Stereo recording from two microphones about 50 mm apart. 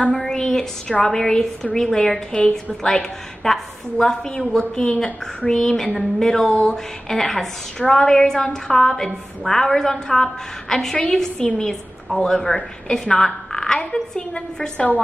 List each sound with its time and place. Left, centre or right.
0.1 s a woman's voice: centre